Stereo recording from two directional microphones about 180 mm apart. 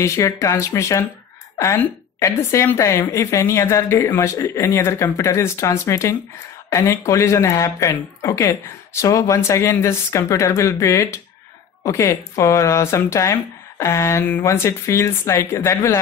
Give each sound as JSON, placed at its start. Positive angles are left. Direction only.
{"t": 0.0, "sound": "a woman's voice", "side_deg": 15}